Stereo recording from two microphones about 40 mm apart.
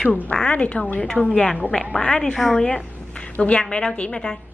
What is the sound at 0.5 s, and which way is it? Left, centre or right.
Speech, left.